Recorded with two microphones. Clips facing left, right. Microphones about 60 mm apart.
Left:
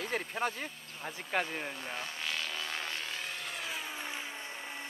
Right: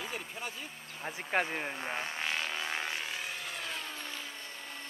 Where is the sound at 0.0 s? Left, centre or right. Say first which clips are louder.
Left 6 dB; left.